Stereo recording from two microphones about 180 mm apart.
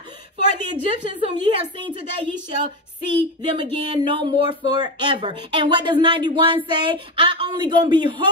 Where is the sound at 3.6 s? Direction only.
25° right (ahead or behind).